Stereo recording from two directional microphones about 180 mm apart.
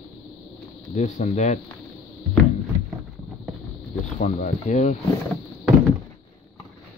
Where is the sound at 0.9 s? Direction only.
40° left (ahead or behind).